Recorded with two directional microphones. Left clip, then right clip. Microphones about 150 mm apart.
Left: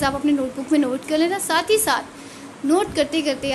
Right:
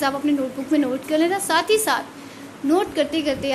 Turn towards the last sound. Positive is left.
turn(degrees=0)  # may be behind; listen again after turning